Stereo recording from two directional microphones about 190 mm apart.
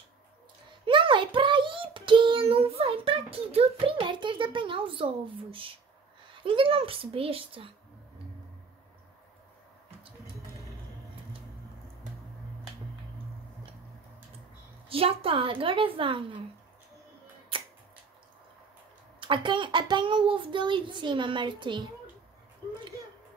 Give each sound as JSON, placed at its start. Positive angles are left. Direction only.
{"t": 0.8, "sound": "a child's voice", "side_deg": -25}
{"t": 14.9, "sound": "a child's voice", "side_deg": -30}
{"t": 19.1, "sound": "a child's voice", "side_deg": -25}